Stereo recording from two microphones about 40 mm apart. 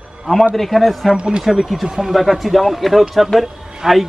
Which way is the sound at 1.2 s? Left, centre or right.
Right.